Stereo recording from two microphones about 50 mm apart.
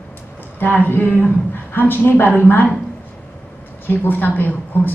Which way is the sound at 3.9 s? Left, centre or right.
Left.